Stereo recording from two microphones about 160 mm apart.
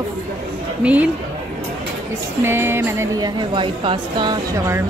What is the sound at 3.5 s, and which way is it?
Speech, 30° right (ahead or behind).